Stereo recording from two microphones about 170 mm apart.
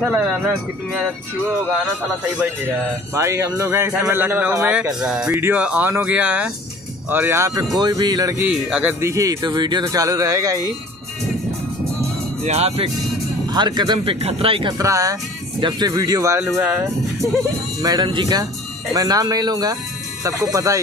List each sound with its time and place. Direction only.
0.0 s a man's voice: 10° right (ahead or behind)
3.2 s a man's voice: 20° right (ahead or behind)
8.5 s a man's voice: 5° right (ahead or behind)
9.0 s speech: 20° right (ahead or behind)
12.4 s speech: 40° right (ahead or behind)
13.5 s speech: 25° right (ahead or behind)
17.8 s speech: 25° right (ahead or behind)